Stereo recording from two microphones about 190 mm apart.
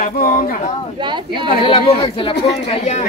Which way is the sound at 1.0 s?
25° right (ahead or behind).